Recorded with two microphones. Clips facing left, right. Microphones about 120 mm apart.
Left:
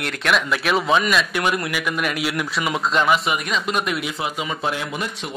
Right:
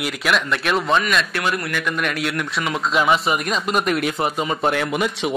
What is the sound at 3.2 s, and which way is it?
Speech, 40° right (ahead or behind).